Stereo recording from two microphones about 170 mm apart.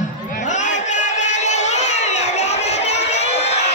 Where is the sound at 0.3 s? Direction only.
45° left (ahead or behind).